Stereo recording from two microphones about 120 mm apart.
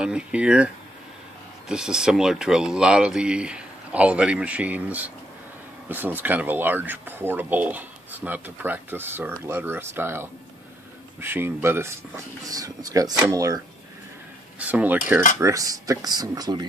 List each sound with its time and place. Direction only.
0.0 s speech: 10° right (ahead or behind)
1.7 s speech: 5° right (ahead or behind)
12.4 s speech: 30° right (ahead or behind)
14.6 s speech: 15° right (ahead or behind)
15.3 s speech: 25° right (ahead or behind)